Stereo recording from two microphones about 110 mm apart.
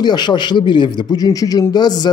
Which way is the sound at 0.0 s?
40° left (ahead or behind).